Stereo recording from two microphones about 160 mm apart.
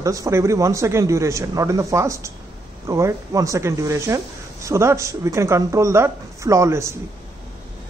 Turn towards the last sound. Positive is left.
turn(degrees=-20)  # may be behind; listen again after turning